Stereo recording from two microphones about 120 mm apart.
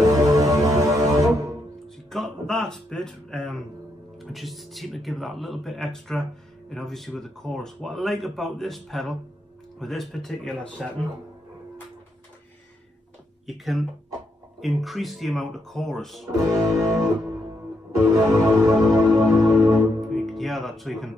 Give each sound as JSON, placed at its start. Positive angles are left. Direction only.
{"t": 0.0, "sound": "music", "side_deg": -30}
{"t": 2.0, "sound": "a man's voice", "side_deg": 5}
{"t": 13.5, "sound": "a man's voice", "side_deg": 0}
{"t": 16.3, "sound": "music", "side_deg": -30}
{"t": 20.1, "sound": "speech", "side_deg": 0}